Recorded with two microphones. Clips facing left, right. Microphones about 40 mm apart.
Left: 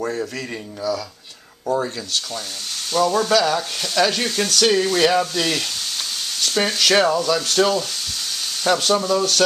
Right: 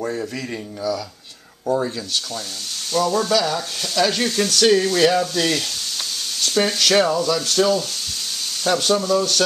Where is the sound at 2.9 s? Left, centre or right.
Left.